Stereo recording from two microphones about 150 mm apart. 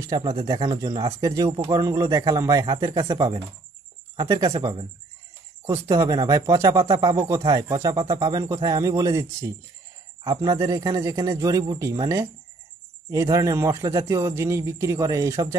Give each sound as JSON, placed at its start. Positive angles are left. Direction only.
{"t": 0.0, "sound": "speech", "side_deg": -25}